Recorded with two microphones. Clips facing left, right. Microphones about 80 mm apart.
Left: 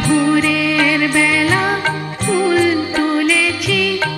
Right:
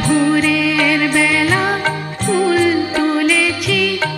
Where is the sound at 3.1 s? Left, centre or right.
Centre.